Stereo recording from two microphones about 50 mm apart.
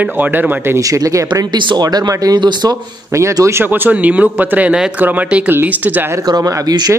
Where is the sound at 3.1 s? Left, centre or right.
Right.